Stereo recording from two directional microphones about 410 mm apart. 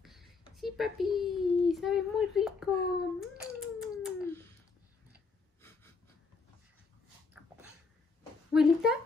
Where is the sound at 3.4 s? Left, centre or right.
Centre.